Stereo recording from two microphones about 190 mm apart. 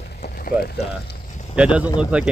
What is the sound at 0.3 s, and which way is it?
Speech, 50° left (ahead or behind).